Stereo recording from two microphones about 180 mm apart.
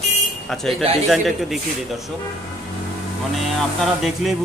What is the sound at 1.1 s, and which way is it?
Speech, centre (ahead or behind).